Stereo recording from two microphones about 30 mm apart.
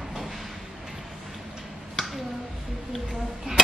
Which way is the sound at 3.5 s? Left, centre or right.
Right.